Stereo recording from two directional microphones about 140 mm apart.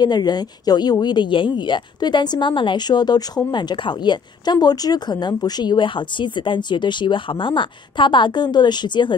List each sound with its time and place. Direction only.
0.0 s a woman's voice: 30° left (ahead or behind)